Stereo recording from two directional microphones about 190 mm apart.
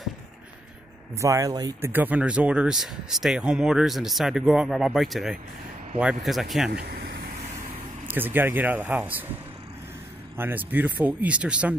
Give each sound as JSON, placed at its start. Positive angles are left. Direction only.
{"t": 1.1, "sound": "speech", "side_deg": -15}
{"t": 6.7, "sound": "speech", "side_deg": -55}
{"t": 8.1, "sound": "speech", "side_deg": -10}
{"t": 10.3, "sound": "speech", "side_deg": -10}